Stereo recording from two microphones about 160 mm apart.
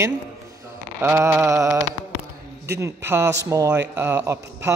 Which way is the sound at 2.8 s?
15° right (ahead or behind).